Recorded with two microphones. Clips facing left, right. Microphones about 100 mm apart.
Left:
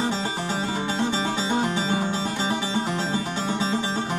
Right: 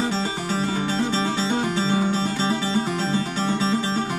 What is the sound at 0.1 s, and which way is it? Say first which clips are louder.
Music: right 2 dB; 15° left (ahead or behind).